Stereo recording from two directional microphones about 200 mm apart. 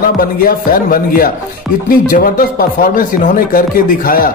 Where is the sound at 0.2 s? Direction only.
45° left (ahead or behind).